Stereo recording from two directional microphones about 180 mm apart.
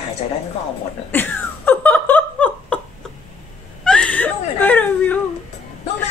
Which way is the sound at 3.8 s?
5° left (ahead or behind).